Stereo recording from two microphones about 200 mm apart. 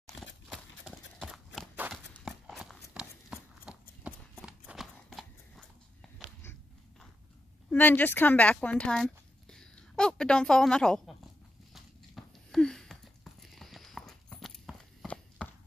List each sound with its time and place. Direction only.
0.5 s horse: centre (ahead or behind)
4.0 s clip-clop: 5° right (ahead or behind)
7.7 s speech: 10° left (ahead or behind)
11.7 s a sound: centre (ahead or behind)